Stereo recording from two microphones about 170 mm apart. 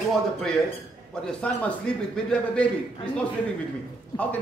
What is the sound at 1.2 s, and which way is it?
Speech, 5° left (ahead or behind).